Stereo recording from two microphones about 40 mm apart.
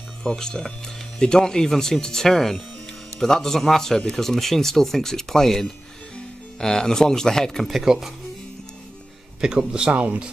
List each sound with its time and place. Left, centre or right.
0.2 s speech: left
7.8 s speech: centre
9.4 s a man's voice: centre
9.9 s speech: right